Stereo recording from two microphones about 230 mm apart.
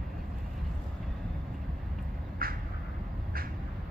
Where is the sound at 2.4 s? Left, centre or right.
Right.